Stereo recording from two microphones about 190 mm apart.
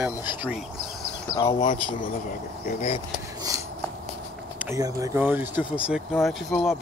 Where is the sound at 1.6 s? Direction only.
40° left (ahead or behind).